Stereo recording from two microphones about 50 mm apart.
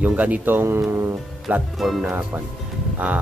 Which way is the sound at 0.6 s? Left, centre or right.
Right.